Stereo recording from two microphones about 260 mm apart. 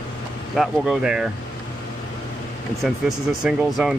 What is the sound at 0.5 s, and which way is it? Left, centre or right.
Speech, centre.